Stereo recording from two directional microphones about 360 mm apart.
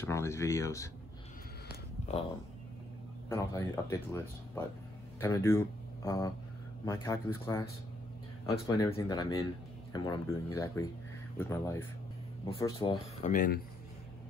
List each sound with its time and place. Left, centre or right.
0.0 s speech: centre
1.7 s a sound: centre
3.3 s speech: centre
13.3 s speech: left